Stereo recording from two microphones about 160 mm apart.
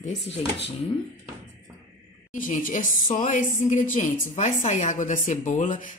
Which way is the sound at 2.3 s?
55° left (ahead or behind).